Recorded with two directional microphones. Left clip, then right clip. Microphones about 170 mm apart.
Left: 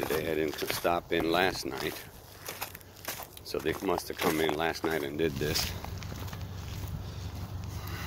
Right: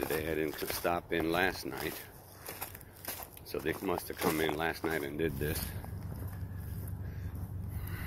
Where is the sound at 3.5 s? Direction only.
30° left (ahead or behind).